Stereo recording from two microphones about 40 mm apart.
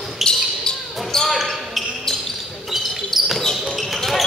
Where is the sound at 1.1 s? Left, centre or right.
Centre.